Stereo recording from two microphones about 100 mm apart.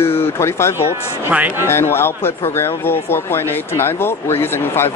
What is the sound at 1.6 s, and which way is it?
Speech, 25° left (ahead or behind).